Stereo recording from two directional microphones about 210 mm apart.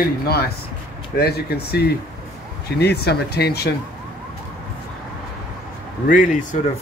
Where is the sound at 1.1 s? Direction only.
50° left (ahead or behind).